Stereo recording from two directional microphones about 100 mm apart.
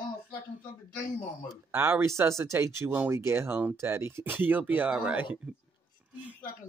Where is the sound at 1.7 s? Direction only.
25° right (ahead or behind).